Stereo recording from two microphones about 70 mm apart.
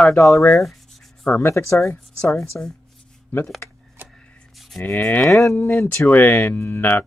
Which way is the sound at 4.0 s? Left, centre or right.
Right.